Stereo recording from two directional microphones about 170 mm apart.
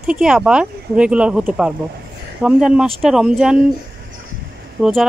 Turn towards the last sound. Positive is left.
turn(degrees=0)  # may be behind; listen again after turning